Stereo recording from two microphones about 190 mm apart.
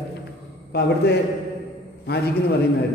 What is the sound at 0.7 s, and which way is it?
Speech, 60° left (ahead or behind).